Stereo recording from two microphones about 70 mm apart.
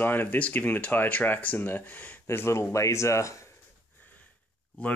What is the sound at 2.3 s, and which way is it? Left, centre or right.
Speech, left.